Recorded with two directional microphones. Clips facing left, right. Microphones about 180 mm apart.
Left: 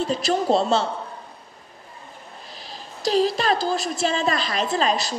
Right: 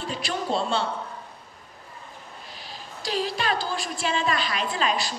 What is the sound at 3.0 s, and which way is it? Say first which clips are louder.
A woman's voice: left 7 dB; 40° left (ahead or behind).